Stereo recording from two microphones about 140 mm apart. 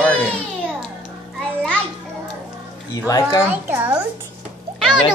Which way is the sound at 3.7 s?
15° right (ahead or behind).